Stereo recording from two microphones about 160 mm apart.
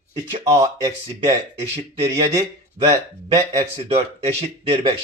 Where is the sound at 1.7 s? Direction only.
40° right (ahead or behind).